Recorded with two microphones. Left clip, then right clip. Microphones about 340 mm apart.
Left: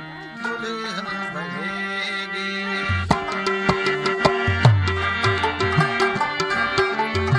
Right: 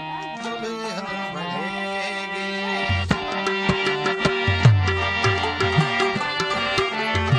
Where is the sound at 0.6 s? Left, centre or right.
Centre.